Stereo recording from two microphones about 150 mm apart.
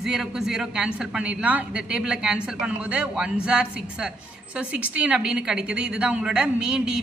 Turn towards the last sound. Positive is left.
turn(degrees=-5)  # may be behind; listen again after turning